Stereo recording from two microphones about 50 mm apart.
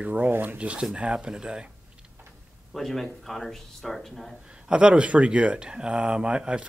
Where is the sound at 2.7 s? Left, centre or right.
Centre.